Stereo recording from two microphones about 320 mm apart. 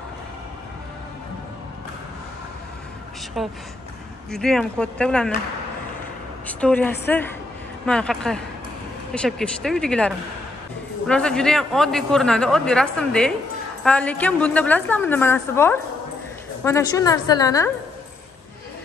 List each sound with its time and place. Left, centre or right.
3.4 s a man's voice: centre
6.4 s a man's voice: centre